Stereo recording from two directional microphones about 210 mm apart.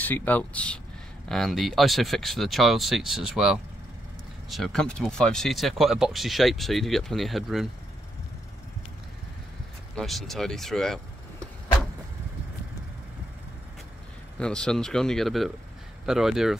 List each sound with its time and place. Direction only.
0.0 s speech: 10° left (ahead or behind)
9.9 s speech: centre (ahead or behind)
14.4 s speech: 5° left (ahead or behind)